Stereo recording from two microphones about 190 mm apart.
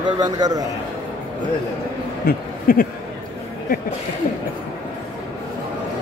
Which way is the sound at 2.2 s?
50° left (ahead or behind).